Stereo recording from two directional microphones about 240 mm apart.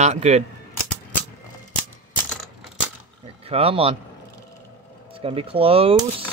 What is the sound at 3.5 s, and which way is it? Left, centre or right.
Speech, right.